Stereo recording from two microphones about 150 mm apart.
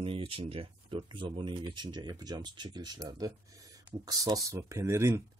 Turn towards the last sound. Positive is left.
turn(degrees=-20)  # may be behind; listen again after turning